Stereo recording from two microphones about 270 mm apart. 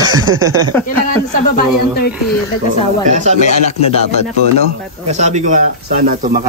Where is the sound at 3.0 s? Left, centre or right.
Right.